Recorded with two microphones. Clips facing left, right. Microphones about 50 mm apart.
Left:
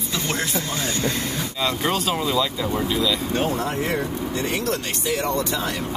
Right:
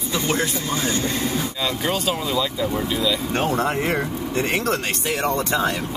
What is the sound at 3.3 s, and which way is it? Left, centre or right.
Speech, right.